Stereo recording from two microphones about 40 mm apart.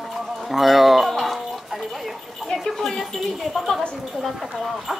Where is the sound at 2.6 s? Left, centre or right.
Centre.